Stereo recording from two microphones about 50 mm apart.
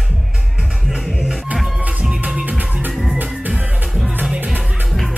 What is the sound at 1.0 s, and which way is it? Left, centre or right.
Music, centre.